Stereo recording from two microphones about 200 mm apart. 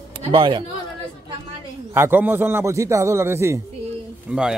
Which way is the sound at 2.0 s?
10° right (ahead or behind).